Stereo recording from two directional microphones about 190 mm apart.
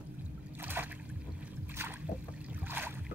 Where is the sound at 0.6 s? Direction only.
10° right (ahead or behind).